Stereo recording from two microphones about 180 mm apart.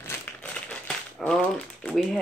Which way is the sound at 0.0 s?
10° left (ahead or behind).